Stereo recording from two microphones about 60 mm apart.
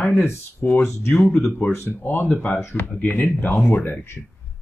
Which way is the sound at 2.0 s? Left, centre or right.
Left.